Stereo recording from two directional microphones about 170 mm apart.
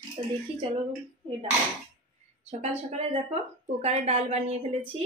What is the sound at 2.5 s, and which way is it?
Speech, 40° right (ahead or behind).